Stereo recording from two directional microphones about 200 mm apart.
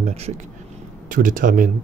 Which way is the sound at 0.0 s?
30° right (ahead or behind).